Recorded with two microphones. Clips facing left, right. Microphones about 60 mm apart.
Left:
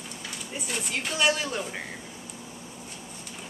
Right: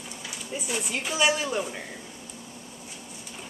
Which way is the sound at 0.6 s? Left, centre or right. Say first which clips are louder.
Right 1 dB; centre.